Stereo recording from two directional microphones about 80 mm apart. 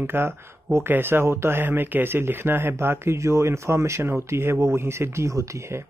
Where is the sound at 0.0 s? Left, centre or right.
Right.